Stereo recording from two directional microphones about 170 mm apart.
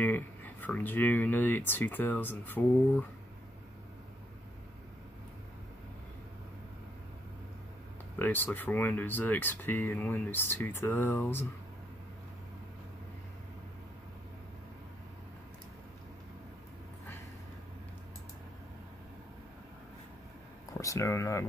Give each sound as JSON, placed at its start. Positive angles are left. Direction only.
{"t": 0.0, "sound": "speech", "side_deg": 10}
{"t": 8.2, "sound": "speech", "side_deg": 10}
{"t": 20.8, "sound": "speech", "side_deg": 20}